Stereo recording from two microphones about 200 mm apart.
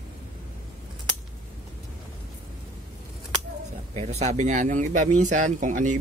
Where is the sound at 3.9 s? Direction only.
35° right (ahead or behind).